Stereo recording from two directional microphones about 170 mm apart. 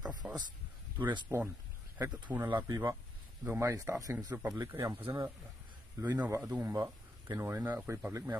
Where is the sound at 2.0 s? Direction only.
15° right (ahead or behind).